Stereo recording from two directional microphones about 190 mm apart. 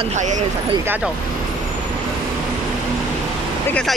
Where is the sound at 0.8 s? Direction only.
10° right (ahead or behind).